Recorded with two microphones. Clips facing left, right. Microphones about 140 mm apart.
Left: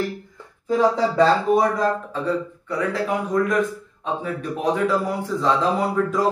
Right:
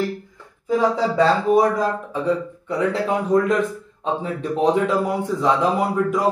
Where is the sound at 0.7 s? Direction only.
5° right (ahead or behind).